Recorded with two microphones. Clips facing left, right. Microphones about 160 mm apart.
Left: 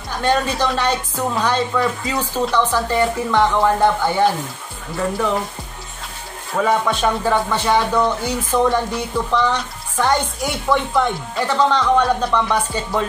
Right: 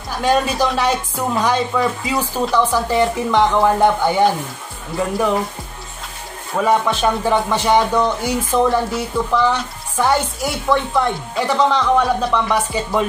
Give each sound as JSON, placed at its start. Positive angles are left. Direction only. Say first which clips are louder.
{"t": 0.2, "sound": "speech", "louder": "right 2 dB", "side_deg": -10}
{"t": 6.6, "sound": "speech", "louder": "right 1 dB", "side_deg": -15}
{"t": 11.4, "sound": "speech", "louder": "even", "side_deg": -10}